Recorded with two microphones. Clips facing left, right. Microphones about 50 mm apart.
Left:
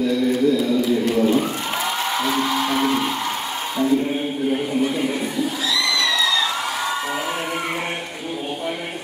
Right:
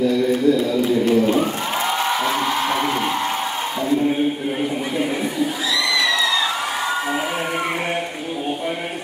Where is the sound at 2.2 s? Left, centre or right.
Right.